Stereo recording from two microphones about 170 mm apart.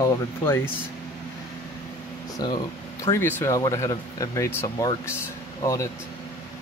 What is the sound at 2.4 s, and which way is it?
Speech, 25° left (ahead or behind).